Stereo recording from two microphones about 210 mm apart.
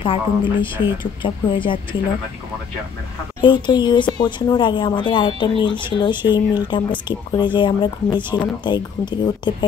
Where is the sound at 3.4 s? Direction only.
20° left (ahead or behind).